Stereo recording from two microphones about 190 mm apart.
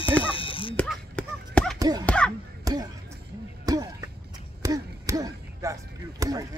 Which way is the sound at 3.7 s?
20° right (ahead or behind).